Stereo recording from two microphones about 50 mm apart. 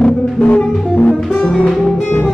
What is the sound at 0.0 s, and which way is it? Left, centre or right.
Music, left.